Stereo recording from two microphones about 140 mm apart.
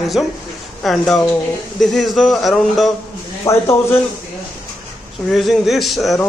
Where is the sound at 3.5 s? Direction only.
20° left (ahead or behind).